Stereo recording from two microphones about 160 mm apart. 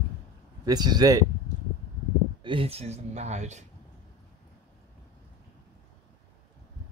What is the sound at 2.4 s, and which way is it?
Speech, 35° right (ahead or behind).